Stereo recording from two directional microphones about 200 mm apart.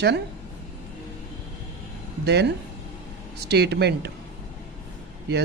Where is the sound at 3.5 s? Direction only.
55° right (ahead or behind).